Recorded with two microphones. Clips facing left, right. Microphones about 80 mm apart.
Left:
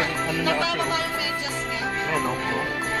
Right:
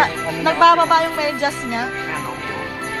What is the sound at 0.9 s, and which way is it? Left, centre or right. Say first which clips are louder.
Music: right 10 dB; right.